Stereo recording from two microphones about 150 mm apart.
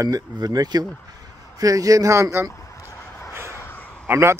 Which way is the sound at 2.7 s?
20° left (ahead or behind).